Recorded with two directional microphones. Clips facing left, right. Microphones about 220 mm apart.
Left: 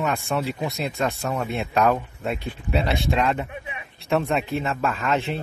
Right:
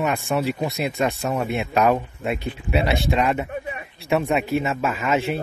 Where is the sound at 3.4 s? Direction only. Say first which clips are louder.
Right 6 dB; 45° right (ahead or behind).